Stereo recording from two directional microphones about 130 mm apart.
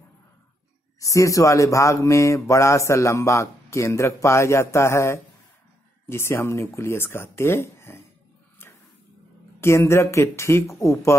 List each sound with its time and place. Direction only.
0.9 s speech: 25° left (ahead or behind)
9.6 s speech: 20° left (ahead or behind)